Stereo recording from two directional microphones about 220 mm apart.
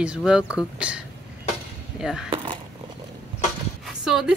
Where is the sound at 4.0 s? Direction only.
5° right (ahead or behind).